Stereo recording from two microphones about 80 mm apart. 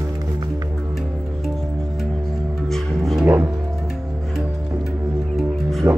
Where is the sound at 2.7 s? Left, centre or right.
Centre.